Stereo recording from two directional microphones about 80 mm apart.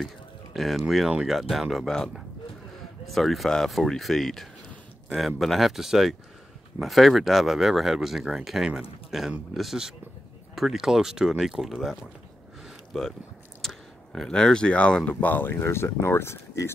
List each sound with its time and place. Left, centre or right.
0.0 s speech: centre
12.6 s a sound: centre
13.6 s speech: centre; by 16.7 s left